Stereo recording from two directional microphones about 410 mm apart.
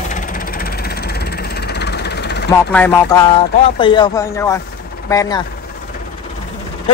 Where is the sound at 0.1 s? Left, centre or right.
Centre.